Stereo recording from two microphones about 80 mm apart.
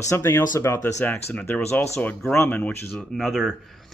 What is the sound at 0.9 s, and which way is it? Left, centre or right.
Speech, centre.